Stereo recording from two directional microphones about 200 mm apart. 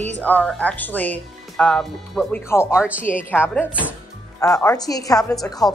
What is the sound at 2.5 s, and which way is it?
Speech, 15° left (ahead or behind).